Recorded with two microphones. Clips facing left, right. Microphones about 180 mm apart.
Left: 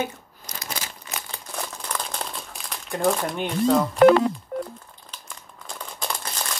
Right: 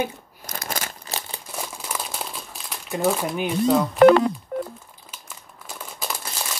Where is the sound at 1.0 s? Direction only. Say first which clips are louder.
Right 2 dB; 30° right (ahead or behind).